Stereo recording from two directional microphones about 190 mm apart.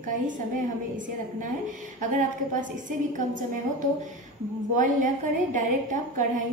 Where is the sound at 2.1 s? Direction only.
40° right (ahead or behind).